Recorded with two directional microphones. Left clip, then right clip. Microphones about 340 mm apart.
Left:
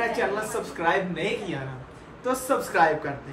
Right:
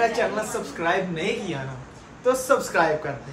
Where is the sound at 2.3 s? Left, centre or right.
Centre.